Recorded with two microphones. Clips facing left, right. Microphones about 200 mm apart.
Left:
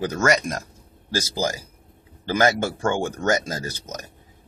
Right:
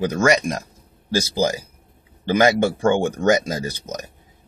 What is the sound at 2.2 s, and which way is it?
Speech, 15° right (ahead or behind).